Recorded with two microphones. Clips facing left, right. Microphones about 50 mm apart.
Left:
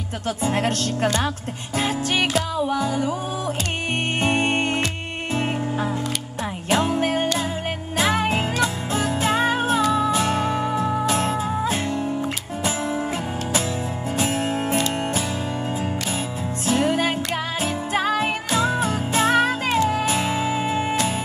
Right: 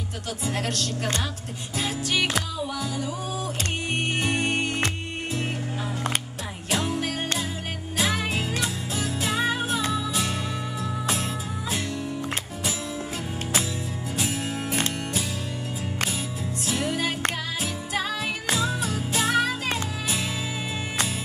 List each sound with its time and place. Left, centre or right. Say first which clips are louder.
0.4 s music: left 6 dB; left
4.2 s music: left 7 dB; left
14.1 s music: left 6 dB; left
16.6 s music: left 7 dB; left